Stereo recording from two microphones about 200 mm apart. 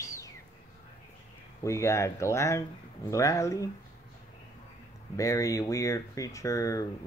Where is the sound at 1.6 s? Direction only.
15° left (ahead or behind).